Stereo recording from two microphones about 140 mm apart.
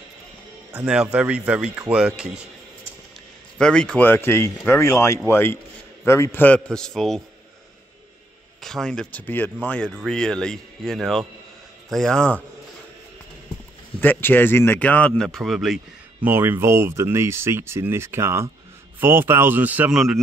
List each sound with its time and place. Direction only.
0.7 s speech: 5° right (ahead or behind)
3.5 s speech: 5° left (ahead or behind)
8.6 s speech: 5° left (ahead or behind)
14.0 s speech: 15° left (ahead or behind); by 16.3 s 5° right (ahead or behind)
16.3 s speech: 15° right (ahead or behind)